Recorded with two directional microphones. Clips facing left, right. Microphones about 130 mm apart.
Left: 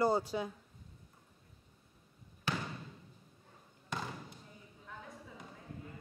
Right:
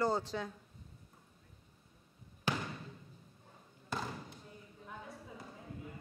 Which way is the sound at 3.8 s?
5° right (ahead or behind).